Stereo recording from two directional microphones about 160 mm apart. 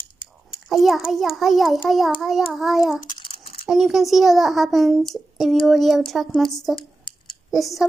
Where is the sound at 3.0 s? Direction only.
30° left (ahead or behind).